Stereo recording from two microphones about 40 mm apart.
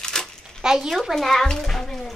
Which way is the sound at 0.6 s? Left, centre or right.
Centre.